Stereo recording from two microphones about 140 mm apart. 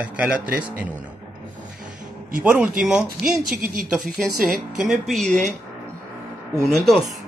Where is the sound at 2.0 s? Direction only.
70° right (ahead or behind).